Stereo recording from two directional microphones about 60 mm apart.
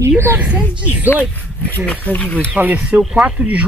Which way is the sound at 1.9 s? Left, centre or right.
Left.